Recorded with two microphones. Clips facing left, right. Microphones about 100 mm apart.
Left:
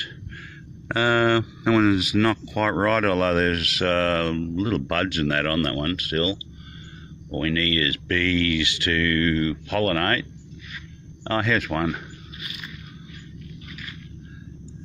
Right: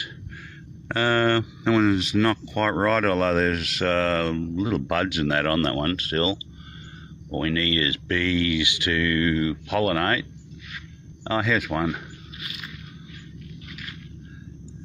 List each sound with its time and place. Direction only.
0.8 s speech: 10° left (ahead or behind); by 10.2 s 15° right (ahead or behind)
11.2 s speech: 5° right (ahead or behind)